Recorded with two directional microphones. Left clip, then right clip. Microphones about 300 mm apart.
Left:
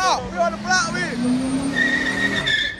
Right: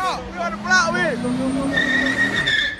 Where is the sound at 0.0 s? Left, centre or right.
Centre.